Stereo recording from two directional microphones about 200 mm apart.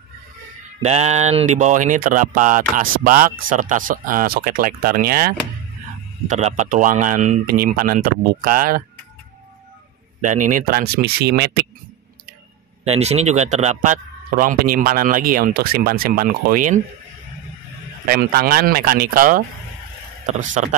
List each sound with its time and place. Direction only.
0.8 s a man's voice: 35° right (ahead or behind)
6.2 s speech: 35° right (ahead or behind)
10.2 s a man's voice: 40° right (ahead or behind)
12.8 s a man's voice: 30° right (ahead or behind)
18.0 s a man's voice: 50° right (ahead or behind)